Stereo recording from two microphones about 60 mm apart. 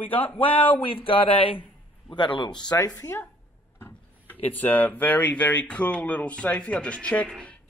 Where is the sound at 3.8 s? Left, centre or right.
Left.